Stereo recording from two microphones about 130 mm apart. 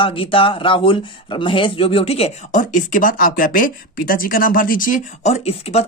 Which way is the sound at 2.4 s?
85° left.